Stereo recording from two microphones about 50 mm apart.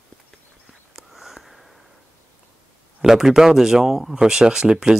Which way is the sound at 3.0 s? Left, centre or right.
Centre.